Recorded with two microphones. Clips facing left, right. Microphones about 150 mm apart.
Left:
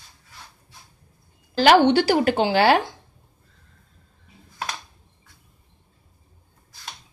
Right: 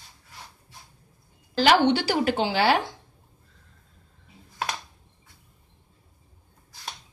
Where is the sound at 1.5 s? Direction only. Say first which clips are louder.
Left 4 dB; 60° left (ahead or behind).